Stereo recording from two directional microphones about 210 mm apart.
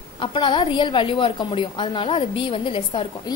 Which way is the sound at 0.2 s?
25° left (ahead or behind).